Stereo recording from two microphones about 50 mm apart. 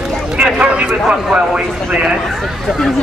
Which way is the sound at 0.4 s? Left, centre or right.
Right.